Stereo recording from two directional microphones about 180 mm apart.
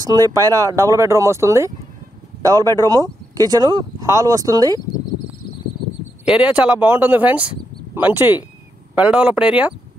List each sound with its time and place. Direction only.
0.0 s speech: 20° right (ahead or behind)
6.2 s speech: 5° right (ahead or behind)